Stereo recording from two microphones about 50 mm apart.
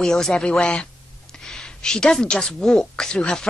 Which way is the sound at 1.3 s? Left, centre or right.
Centre.